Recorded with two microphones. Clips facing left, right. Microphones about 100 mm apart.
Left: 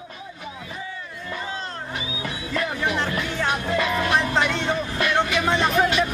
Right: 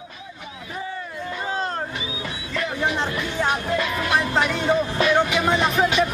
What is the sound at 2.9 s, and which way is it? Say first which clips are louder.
Music: right 1 dB; 20° right (ahead or behind).